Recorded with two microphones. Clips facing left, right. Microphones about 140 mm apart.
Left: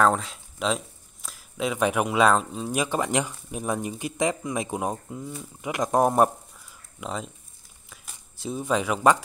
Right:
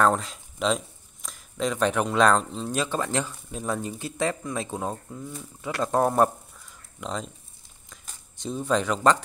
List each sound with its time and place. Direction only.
0.0 s speech: centre (ahead or behind)